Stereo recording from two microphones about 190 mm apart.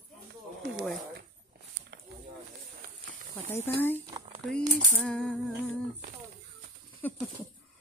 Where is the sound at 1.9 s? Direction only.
60° right (ahead or behind).